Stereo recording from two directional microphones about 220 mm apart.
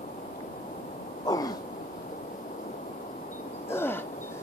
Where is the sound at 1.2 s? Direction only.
15° left (ahead or behind).